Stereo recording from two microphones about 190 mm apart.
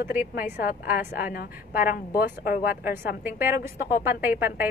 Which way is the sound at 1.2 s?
50° left (ahead or behind).